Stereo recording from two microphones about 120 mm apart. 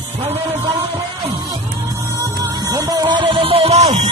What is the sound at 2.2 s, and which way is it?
Music, 30° right (ahead or behind).